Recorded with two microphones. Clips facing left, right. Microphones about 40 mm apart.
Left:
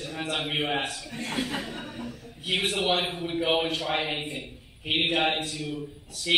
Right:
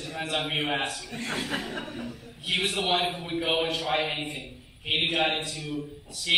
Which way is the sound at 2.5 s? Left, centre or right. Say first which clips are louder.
Left 1 dB; centre.